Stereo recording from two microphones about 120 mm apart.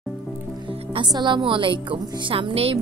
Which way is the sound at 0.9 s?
40° right (ahead or behind).